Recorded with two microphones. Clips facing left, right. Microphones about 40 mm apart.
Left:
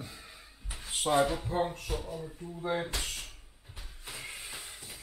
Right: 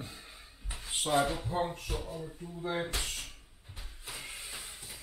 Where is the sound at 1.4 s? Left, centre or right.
Centre.